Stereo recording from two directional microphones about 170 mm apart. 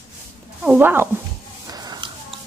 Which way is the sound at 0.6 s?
10° right (ahead or behind).